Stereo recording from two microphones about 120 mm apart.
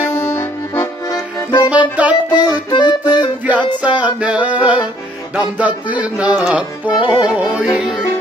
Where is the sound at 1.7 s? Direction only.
10° right (ahead or behind).